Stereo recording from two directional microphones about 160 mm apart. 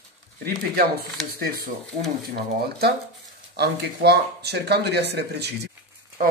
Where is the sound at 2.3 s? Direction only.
80° right.